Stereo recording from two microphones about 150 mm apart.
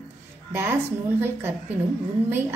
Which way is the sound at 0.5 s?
15° right (ahead or behind).